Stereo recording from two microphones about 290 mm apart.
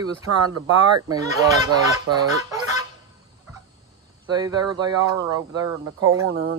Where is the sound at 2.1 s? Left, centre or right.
Right.